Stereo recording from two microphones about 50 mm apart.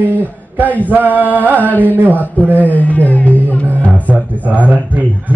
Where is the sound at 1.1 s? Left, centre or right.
Left.